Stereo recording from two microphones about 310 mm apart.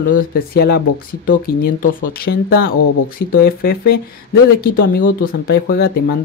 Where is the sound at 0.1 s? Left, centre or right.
Left.